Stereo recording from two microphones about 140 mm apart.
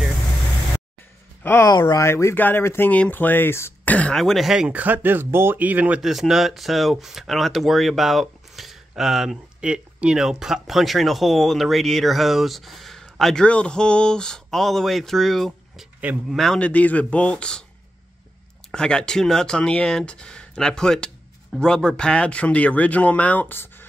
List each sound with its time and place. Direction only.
1.4 s speech: 15° left (ahead or behind)
1.7 s speech: 25° left (ahead or behind); by 15.9 s centre (ahead or behind)
16.0 s speech: 10° right (ahead or behind)
16.3 s speech: 5° left (ahead or behind)
18.7 s speech: 5° left (ahead or behind)